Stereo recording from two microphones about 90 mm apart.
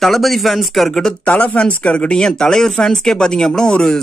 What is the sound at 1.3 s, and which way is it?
Speech, 15° left (ahead or behind).